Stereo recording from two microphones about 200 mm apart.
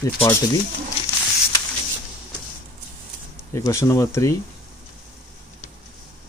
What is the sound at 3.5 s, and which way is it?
Speech, 15° left (ahead or behind).